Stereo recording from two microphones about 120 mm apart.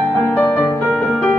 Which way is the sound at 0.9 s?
5° left (ahead or behind).